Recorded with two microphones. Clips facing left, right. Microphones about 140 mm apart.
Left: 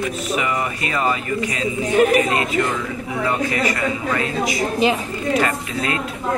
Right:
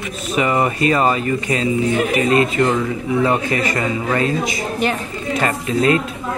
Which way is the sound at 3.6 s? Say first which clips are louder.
Right 1 dB; 30° right (ahead or behind).